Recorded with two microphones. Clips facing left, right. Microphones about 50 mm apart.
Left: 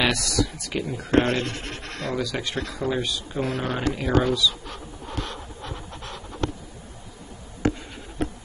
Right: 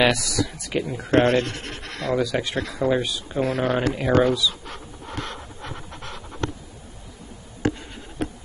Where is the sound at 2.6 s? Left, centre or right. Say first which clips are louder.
Right 4 dB; right.